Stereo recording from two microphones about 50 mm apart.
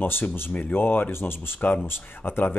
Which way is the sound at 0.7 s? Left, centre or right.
Left.